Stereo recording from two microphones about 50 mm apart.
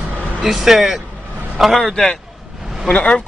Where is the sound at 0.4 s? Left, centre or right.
Centre.